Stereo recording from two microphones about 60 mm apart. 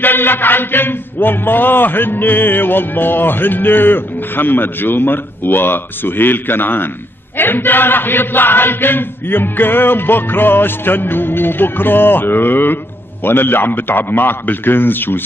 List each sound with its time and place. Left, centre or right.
0.0 s a man's voice: left